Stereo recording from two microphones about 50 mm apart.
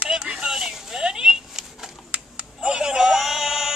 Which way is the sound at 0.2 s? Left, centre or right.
Centre.